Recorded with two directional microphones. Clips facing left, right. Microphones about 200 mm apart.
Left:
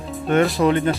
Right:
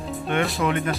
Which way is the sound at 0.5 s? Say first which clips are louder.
Left 6 dB; 35° left (ahead or behind).